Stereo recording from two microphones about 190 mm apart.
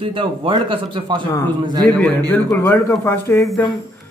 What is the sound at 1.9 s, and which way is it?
A man's voice, 10° left (ahead or behind).